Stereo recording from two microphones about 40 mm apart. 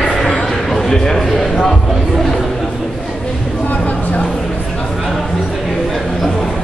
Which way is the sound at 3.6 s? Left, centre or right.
Left.